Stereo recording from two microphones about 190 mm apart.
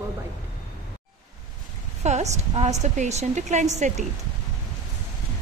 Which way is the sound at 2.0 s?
35° right (ahead or behind).